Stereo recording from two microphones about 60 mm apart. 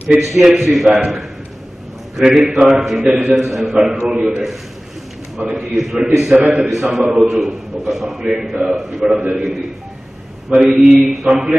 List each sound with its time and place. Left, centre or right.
0.2 s a man's voice: centre
6.3 s a man's voice: centre
6.6 s a man's voice: centre
10.6 s a man's voice: centre